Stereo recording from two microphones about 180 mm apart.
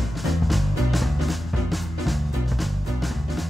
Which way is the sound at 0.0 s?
Centre (ahead or behind).